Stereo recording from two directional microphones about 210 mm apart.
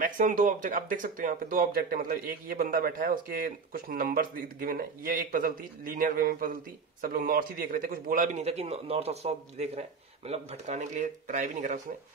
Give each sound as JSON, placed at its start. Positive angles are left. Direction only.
{"t": 0.0, "sound": "a man's voice", "side_deg": -40}